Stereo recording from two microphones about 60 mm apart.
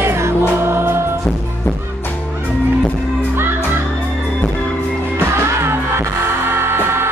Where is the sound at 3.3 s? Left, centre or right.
Right.